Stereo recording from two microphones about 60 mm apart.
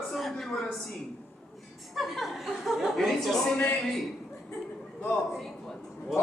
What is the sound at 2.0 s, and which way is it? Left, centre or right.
Speech, centre.